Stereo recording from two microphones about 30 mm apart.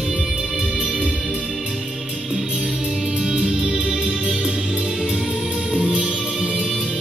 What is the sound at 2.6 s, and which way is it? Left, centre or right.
Music, centre.